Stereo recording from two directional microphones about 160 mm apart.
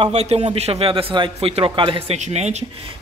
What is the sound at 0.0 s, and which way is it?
A man's voice, 40° right (ahead or behind).